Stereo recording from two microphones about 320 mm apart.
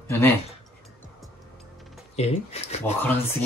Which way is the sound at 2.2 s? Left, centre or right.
Centre.